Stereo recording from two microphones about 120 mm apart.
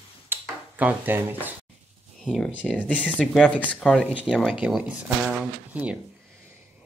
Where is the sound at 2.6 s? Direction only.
Centre (ahead or behind).